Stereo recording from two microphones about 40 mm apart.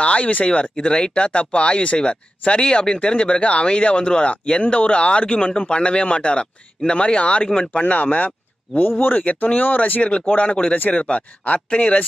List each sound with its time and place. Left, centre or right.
0.0 s a sound: left
0.5 s speech: left
7.9 s speech: left
10.0 s speech: left